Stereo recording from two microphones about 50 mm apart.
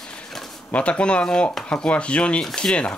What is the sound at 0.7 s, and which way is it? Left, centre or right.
Speech, left.